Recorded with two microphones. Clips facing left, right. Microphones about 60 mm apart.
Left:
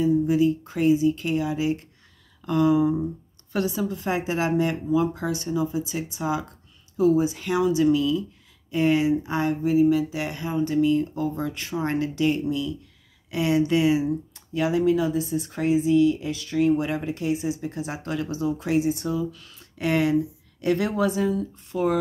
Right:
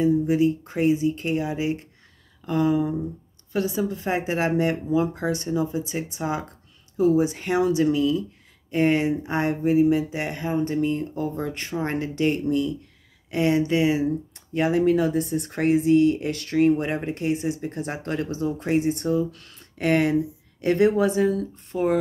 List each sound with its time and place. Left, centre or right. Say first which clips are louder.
0.0 s speech: even; right
14.3 s speech: right 2 dB; right
16.6 s speech: right 1 dB; right